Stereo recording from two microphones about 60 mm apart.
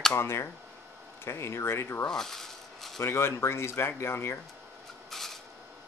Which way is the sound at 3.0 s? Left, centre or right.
Left.